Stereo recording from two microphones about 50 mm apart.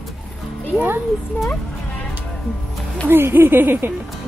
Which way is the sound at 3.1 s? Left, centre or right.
Right.